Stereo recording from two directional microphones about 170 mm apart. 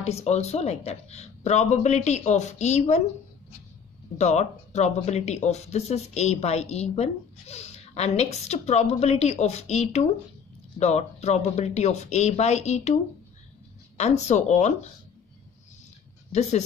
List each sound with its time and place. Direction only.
0.0 s speech: 40° left (ahead or behind)
4.2 s speech: 40° left (ahead or behind)
16.3 s speech: 40° left (ahead or behind)